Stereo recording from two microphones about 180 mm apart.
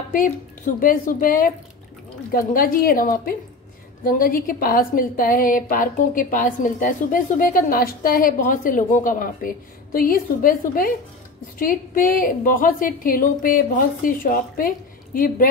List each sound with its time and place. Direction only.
0.7 s a woman's voice: 50° left (ahead or behind)